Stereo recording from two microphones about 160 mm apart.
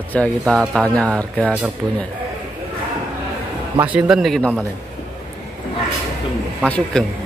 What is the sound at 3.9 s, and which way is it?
Speech, 5° right (ahead or behind).